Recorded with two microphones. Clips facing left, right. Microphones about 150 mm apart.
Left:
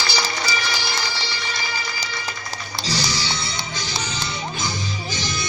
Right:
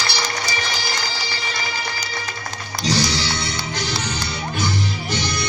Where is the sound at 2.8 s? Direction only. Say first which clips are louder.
Right 6 dB; 60° right (ahead or behind).